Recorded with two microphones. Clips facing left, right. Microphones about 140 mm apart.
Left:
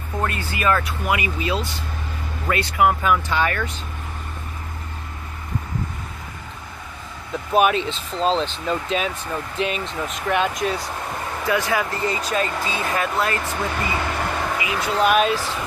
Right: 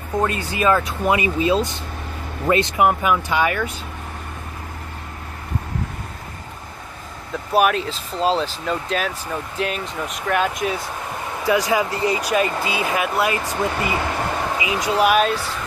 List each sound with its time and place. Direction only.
0.2 s speech: 20° right (ahead or behind)
7.5 s speech: centre (ahead or behind)
11.4 s speech: 15° right (ahead or behind)
15.0 s speech: centre (ahead or behind)